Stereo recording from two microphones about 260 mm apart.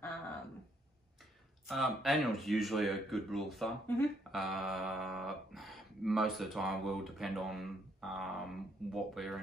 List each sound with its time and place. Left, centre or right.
1.7 s speech: centre